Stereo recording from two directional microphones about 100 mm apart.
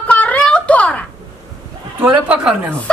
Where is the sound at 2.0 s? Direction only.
15° right (ahead or behind).